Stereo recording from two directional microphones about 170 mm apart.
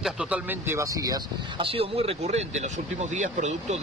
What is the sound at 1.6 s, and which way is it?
Speech, 35° right (ahead or behind).